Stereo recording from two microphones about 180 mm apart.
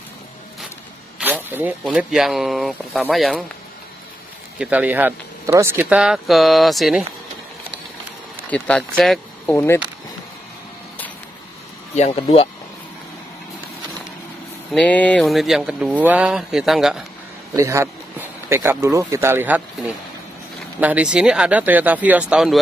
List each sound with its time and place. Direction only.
1.2 s speech: 10° right (ahead or behind)
4.6 s speech: 10° right (ahead or behind)
8.5 s speech: 5° left (ahead or behind)
9.5 s speech: 15° left (ahead or behind)
11.9 s speech: 35° left (ahead or behind)
14.7 s speech: 5° left (ahead or behind)
17.6 s speech: 15° right (ahead or behind)
20.8 s speech: 5° right (ahead or behind)